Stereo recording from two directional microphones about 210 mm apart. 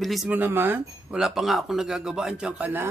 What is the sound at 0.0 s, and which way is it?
Speech, centre (ahead or behind).